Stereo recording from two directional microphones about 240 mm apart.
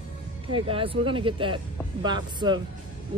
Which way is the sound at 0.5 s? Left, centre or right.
Right.